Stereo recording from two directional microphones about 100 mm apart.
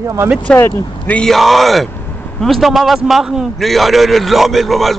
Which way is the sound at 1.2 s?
Centre (ahead or behind).